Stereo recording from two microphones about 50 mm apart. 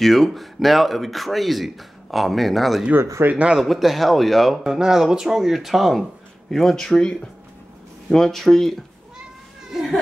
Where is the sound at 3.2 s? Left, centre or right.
Right.